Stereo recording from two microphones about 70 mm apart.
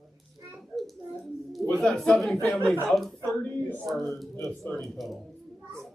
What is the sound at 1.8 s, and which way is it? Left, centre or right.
Speech, centre.